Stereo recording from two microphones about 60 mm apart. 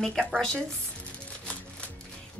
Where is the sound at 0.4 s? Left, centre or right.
Centre.